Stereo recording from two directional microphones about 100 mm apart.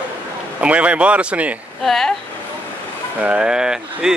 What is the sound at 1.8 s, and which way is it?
Speech, 5° left (ahead or behind).